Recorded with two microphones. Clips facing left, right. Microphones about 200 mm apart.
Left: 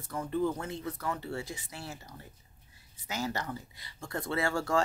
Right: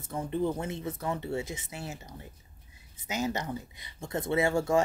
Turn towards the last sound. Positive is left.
turn(degrees=-20)  # may be behind; listen again after turning